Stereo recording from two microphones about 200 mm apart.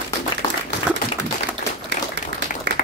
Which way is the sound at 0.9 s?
5° right (ahead or behind).